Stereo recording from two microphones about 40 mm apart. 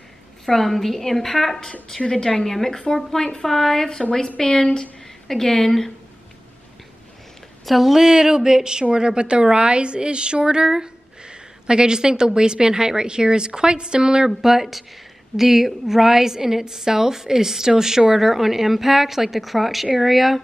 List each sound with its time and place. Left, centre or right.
0.5 s a woman's voice: centre
7.6 s a woman's voice: centre
8.0 s a woman's voice: centre
14.3 s a woman's voice: centre